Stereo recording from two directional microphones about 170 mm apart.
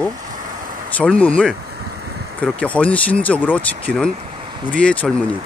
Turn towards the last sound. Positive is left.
turn(degrees=5)  # may be behind; listen again after turning